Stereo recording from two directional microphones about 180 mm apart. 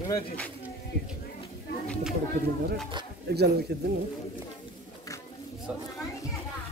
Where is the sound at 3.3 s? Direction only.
65° right (ahead or behind).